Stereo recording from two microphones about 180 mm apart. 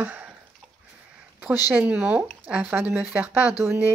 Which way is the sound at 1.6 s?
10° right (ahead or behind).